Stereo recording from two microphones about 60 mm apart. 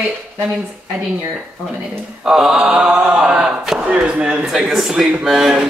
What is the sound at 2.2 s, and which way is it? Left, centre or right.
Speech, centre.